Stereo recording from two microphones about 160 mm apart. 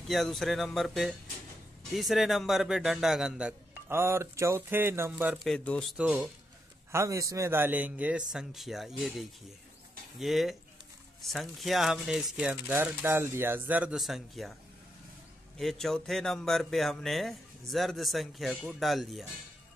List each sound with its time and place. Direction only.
0.1 s a man's voice: centre (ahead or behind)
5.9 s speech: 10° right (ahead or behind)
6.9 s a man's voice: 20° right (ahead or behind); by 14.5 s centre (ahead or behind)
15.5 s a man's voice: centre (ahead or behind)